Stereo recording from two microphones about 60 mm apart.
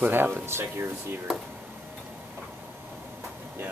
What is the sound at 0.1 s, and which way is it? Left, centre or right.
Speech, right.